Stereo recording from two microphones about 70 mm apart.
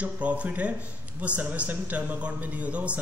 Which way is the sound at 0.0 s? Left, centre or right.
Centre.